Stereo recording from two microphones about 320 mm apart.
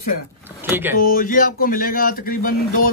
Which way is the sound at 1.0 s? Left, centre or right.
Left.